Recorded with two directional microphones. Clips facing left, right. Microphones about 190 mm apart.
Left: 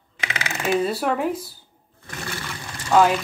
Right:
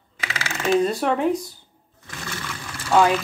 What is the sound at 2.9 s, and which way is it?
Speech, 5° left (ahead or behind).